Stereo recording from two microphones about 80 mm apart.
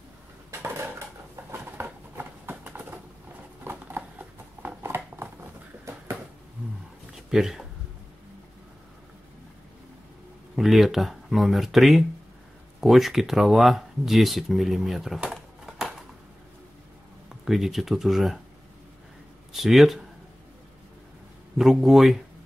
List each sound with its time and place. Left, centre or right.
0.5 s dishes: right
1.5 s a sound: right
2.5 s bird: centre
3.6 s a sound: right
7.2 s speech: centre
10.5 s speech: centre
15.1 s a sound: centre
17.5 s speech: centre
19.5 s speech: centre
21.5 s speech: centre